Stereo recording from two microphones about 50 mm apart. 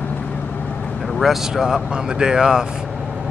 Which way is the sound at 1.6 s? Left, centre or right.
Centre.